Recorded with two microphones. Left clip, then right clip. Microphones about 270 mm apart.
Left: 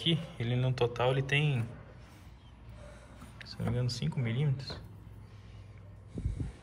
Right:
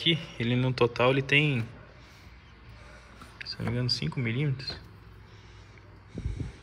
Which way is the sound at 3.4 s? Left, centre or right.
Centre.